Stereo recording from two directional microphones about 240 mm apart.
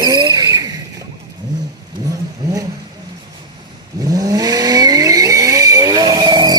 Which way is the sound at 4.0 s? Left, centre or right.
Centre.